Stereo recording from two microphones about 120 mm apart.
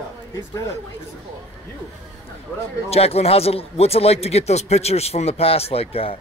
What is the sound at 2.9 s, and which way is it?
Speech, 55° left (ahead or behind).